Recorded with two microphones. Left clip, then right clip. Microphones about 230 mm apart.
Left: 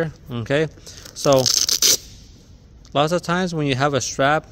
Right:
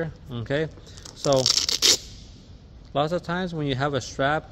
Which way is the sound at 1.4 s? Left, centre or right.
Centre.